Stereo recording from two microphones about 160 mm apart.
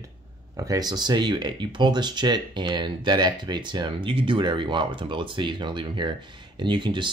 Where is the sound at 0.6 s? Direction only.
25° right (ahead or behind).